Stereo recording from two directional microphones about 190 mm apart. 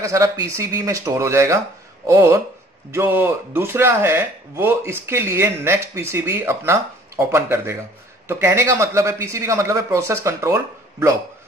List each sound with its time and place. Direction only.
0.0 s speech: 15° right (ahead or behind)